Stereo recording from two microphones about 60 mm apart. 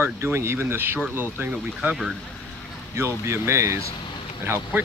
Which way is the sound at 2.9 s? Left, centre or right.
Right.